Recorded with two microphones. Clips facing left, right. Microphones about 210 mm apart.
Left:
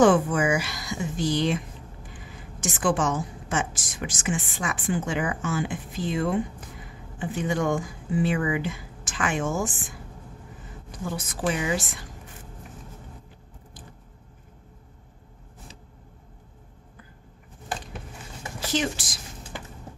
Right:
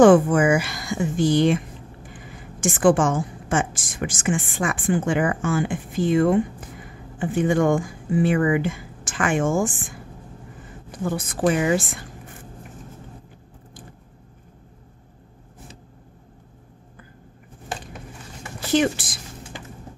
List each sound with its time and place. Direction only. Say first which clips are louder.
0.0 s a woman's voice: right 6 dB; 50° right (ahead or behind)
18.7 s a woman's voice: right 8 dB; 60° right (ahead or behind)